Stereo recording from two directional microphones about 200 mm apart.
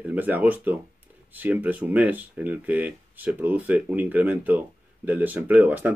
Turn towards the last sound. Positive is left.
turn(degrees=-10)  # may be behind; listen again after turning